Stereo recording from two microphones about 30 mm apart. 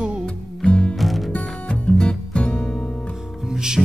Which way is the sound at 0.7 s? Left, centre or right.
Left.